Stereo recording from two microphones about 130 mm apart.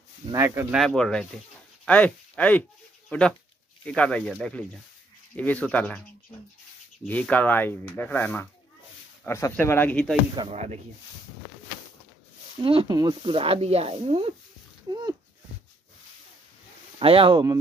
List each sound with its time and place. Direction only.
0.3 s speech: 20° right (ahead or behind)
0.7 s speech: centre (ahead or behind)
7.1 s speech: 10° left (ahead or behind)
10.5 s speech: 55° right (ahead or behind)
12.6 s speech: 45° right (ahead or behind)
14.9 s speech: 35° right (ahead or behind)
17.0 s speech: 45° right (ahead or behind)